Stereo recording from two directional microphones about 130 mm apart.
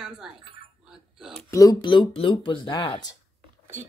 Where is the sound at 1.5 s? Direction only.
25° left (ahead or behind).